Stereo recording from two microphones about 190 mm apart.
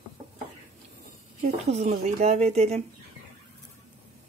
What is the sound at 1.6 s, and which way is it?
Speech, 35° right (ahead or behind).